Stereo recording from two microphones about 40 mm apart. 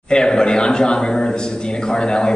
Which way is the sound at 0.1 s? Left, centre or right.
Centre.